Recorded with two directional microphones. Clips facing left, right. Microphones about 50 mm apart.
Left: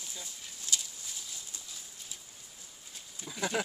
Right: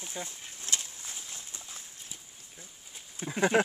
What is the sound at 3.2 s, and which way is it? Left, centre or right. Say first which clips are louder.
Speech: right 8 dB; right.